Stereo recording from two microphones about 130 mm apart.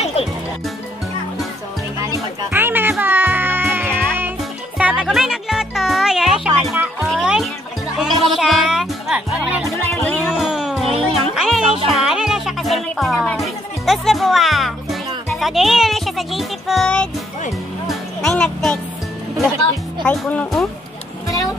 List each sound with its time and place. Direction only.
0.0 s music: 50° left (ahead or behind)
2.5 s music: 15° right (ahead or behind)
10.0 s music: 5° left (ahead or behind)
10.4 s music: 5° right (ahead or behind)
20.0 s speech: 10° left (ahead or behind)